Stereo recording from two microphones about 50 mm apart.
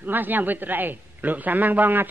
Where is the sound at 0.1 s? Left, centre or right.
Right.